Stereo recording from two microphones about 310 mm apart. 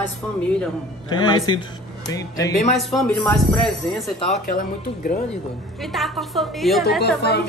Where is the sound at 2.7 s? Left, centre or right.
Centre.